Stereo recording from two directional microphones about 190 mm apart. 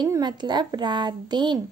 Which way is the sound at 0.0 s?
20° right (ahead or behind).